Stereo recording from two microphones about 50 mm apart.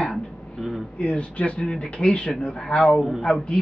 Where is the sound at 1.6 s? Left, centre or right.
Centre.